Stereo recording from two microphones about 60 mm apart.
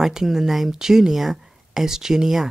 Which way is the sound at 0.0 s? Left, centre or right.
Centre.